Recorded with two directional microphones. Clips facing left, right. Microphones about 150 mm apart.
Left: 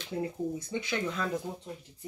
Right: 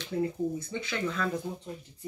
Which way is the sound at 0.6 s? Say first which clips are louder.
Even; 15° left (ahead or behind).